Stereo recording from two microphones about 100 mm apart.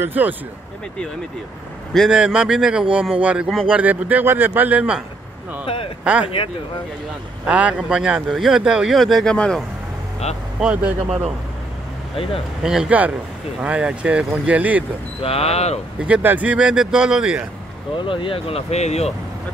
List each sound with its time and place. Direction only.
0.0 s speech: 15° right (ahead or behind)
2.0 s speech: 10° right (ahead or behind)
6.2 s speech: 60° left (ahead or behind)
7.4 s speech: 10° right (ahead or behind); by 9.7 s 5° left (ahead or behind)
10.2 s speech: 90° left
10.6 s speech: 10° right (ahead or behind)
12.6 s speech: 5° right (ahead or behind)
15.2 s speech: 85° left
16.0 s speech: 15° right (ahead or behind)
17.9 s speech: 60° left (ahead or behind); by 19.1 s 90° left